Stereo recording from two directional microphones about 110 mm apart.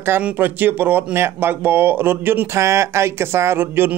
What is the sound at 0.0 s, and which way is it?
Speech, 20° right (ahead or behind).